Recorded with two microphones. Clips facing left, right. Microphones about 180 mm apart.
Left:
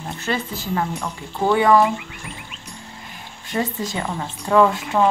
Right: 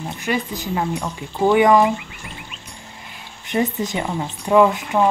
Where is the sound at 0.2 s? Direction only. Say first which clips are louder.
Right 2 dB; 15° right (ahead or behind).